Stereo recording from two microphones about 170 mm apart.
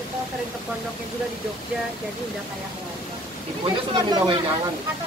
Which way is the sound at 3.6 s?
25° right (ahead or behind).